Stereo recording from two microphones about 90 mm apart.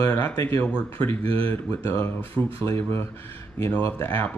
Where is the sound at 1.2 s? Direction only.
90° right.